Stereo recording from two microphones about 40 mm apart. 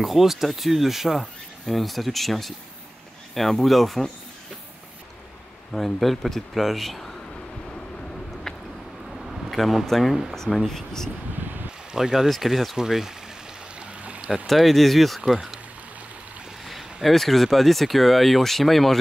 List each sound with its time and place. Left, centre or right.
0.0 s speech: centre
5.7 s speech: centre
9.1 s air conditioning: centre
10.3 s speech: centre
11.9 s speech: centre
12.4 s speech: centre
13.7 s a sound: right
14.4 s speech: centre
16.6 s speech: centre